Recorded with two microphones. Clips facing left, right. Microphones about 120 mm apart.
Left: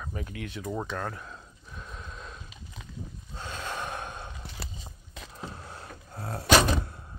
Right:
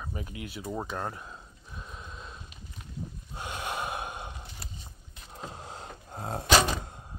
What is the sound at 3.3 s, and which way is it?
Gasp, 15° right (ahead or behind).